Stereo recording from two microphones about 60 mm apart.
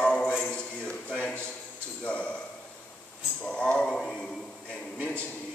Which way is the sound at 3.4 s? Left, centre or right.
Centre.